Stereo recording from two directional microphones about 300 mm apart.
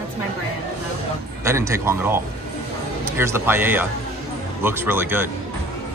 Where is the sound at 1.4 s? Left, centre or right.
Centre.